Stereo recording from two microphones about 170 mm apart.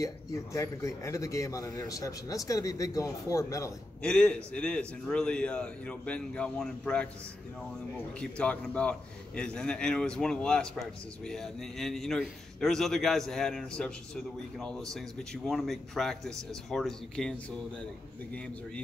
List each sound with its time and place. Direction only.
0.0 s a man's voice: 20° left (ahead or behind)
4.0 s a man's voice: 5° left (ahead or behind)
8.2 s a man's voice: 5° left (ahead or behind)